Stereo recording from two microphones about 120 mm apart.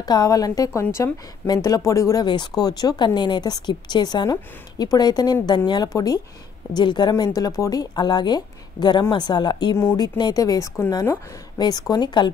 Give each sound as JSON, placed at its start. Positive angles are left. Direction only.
{"t": 0.0, "sound": "a woman's voice", "side_deg": 30}